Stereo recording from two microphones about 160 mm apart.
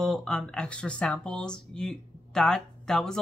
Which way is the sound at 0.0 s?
5° left (ahead or behind).